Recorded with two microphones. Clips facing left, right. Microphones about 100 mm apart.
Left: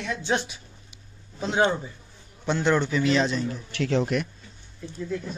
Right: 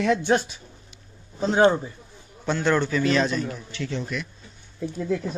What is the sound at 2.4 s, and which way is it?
A man's voice, 20° left (ahead or behind).